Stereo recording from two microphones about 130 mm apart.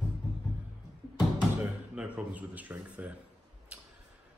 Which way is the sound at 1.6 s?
10° right (ahead or behind).